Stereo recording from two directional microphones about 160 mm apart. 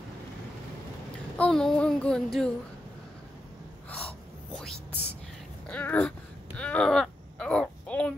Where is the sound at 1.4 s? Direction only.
5° left (ahead or behind).